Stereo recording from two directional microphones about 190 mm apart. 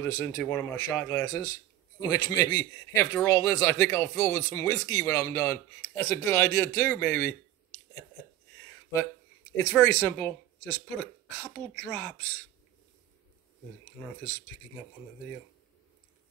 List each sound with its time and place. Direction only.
0.0 s speech: 15° left (ahead or behind)
9.6 s speech: 10° left (ahead or behind)